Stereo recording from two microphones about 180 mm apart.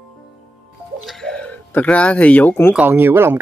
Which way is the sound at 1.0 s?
5° left (ahead or behind).